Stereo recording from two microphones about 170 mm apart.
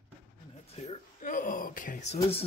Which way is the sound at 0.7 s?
40° left (ahead or behind).